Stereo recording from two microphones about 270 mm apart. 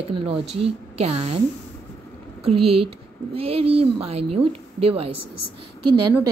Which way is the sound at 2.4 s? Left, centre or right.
Right.